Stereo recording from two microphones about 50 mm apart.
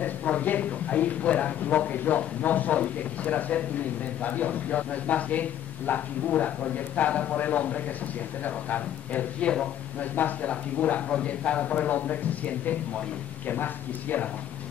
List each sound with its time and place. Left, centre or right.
0.0 s a man's voice: left
13.5 s speech: left